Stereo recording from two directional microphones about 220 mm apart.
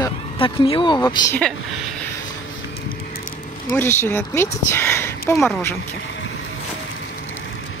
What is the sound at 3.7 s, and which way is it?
Speech, 10° left (ahead or behind).